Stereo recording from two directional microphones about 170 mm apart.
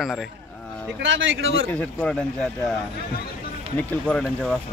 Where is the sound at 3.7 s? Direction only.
5° left (ahead or behind).